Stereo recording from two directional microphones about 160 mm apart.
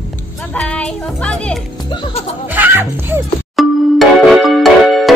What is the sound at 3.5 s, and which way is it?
Music, centre (ahead or behind).